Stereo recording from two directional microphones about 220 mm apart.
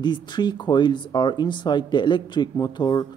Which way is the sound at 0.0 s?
20° left (ahead or behind).